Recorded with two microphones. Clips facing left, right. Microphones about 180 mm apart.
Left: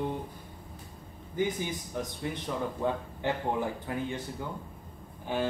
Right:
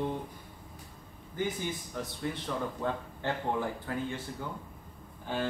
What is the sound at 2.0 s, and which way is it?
A man's voice, 15° left (ahead or behind).